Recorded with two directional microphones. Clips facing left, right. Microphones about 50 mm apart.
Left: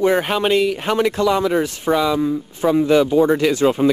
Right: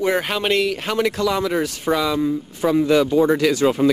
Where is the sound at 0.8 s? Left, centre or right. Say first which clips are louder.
Left 3 dB; left.